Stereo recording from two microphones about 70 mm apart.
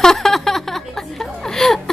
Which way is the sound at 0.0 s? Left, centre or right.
Centre.